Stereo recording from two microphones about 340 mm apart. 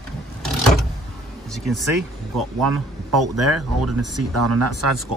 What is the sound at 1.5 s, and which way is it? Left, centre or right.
A man's voice, centre.